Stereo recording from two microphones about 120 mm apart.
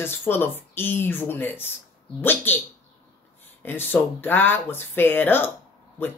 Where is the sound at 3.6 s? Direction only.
15° left (ahead or behind).